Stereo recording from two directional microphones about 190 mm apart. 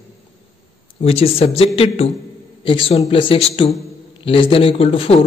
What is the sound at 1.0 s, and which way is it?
A man's voice, 30° left (ahead or behind).